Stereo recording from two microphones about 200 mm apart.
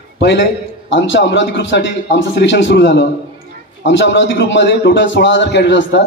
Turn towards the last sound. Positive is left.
turn(degrees=60)  # may be behind; listen again after turning